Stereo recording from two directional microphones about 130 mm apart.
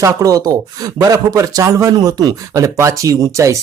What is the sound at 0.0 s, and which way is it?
Speech, 25° right (ahead or behind).